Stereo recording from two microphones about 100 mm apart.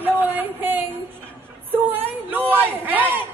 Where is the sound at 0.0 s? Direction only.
20° right (ahead or behind).